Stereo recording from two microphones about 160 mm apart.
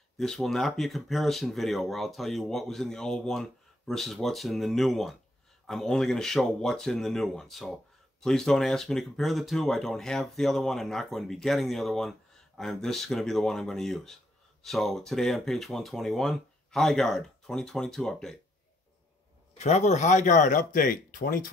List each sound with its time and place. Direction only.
0.2 s speech: centre (ahead or behind)
19.6 s speech: 45° left (ahead or behind); by 21.4 s 65° left (ahead or behind)